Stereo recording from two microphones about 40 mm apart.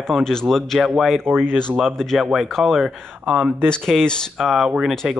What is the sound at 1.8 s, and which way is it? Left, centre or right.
Speech, centre.